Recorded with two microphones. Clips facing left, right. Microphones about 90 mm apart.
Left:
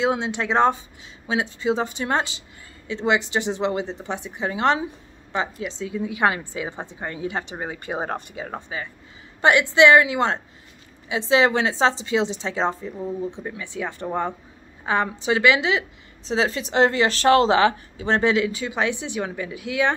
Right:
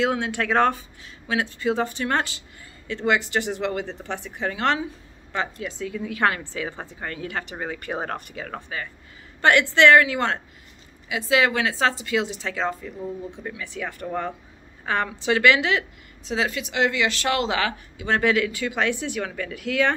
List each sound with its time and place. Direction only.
0.0 s a woman's voice: 20° left (ahead or behind)
16.3 s a woman's voice: 30° left (ahead or behind)